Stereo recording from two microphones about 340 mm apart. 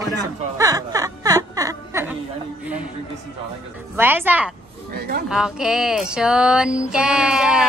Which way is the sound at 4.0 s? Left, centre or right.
Centre.